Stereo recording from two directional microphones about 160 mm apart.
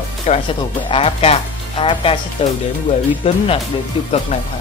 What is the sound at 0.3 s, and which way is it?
Speech, 30° left (ahead or behind).